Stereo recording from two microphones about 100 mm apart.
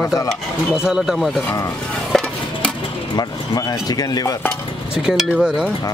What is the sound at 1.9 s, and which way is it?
Stir, 5° left (ahead or behind).